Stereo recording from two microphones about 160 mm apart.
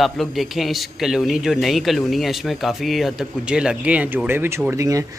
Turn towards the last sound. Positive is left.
turn(degrees=-20)  # may be behind; listen again after turning